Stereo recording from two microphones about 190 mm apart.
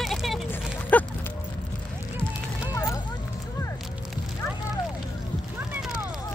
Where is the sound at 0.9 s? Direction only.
10° left (ahead or behind).